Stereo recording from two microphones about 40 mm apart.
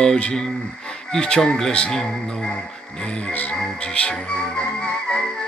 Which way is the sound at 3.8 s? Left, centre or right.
Left.